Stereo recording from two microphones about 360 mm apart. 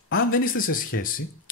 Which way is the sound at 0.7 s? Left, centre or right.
Left.